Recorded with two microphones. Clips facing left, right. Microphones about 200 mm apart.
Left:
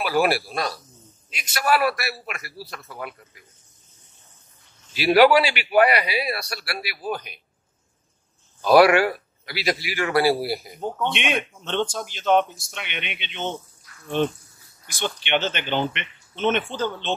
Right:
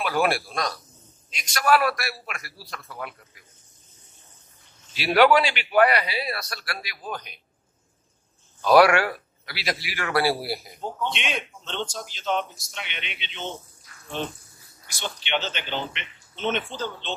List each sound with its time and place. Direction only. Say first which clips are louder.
0.0 s a man's voice: left 3 dB; 5° left (ahead or behind)
4.9 s a man's voice: left 3 dB; 5° left (ahead or behind)
8.6 s a man's voice: left 2 dB; 5° left (ahead or behind)
10.8 s a man's voice: left 5 dB; 60° left (ahead or behind)
14.9 s a man's voice: left 5 dB; 60° left (ahead or behind)